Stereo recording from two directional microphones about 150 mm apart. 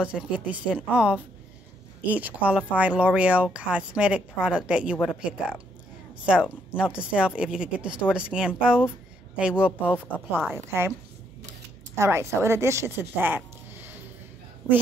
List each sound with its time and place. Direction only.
0.0 s speech: 5° right (ahead or behind)
6.8 s speech: 5° right (ahead or behind)
11.9 s speech: 20° right (ahead or behind)